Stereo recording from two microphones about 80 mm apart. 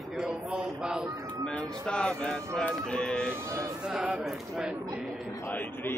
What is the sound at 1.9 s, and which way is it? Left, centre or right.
Speech, centre.